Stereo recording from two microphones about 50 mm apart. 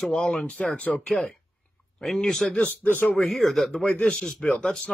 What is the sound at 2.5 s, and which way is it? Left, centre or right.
Speech, left.